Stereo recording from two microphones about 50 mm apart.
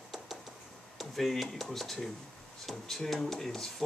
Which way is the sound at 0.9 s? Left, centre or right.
Centre.